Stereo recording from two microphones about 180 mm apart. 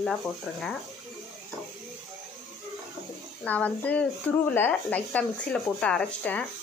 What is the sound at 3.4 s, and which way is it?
Speech, 10° left (ahead or behind).